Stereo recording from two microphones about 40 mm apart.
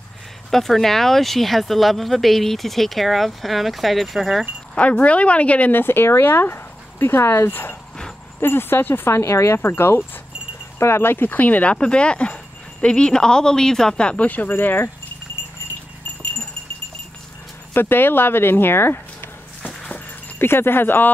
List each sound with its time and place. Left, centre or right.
0.5 s speech: centre
4.7 s speech: left
5.7 s speech: left
11.3 s speech: left
11.7 s speech: left
13.9 s speech: left
14.2 s speech: left
14.5 s speech: left
17.7 s speech: left
20.3 s speech: left